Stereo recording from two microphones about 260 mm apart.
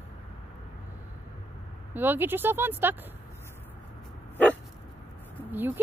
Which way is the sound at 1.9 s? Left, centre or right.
Centre.